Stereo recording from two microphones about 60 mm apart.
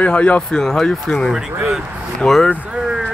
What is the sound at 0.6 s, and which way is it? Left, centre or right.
Speech, centre.